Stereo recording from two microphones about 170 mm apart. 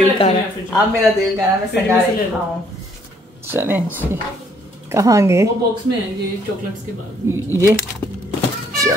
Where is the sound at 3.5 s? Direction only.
15° right (ahead or behind).